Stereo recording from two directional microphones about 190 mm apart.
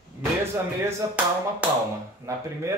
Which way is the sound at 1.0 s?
20° right (ahead or behind).